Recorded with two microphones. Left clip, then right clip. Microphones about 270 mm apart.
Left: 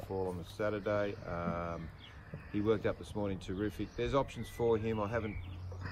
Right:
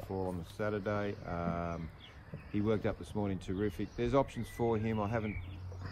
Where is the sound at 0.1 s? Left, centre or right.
Right.